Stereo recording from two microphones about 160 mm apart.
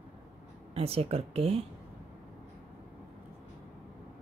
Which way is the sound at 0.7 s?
35° right (ahead or behind).